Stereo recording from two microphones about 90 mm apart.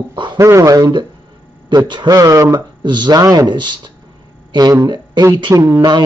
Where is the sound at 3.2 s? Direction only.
40° right (ahead or behind).